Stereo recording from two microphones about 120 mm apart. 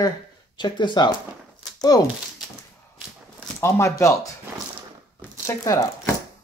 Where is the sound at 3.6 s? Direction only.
25° left (ahead or behind).